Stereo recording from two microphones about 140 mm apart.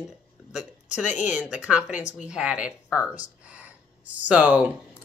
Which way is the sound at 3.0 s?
10° right (ahead or behind).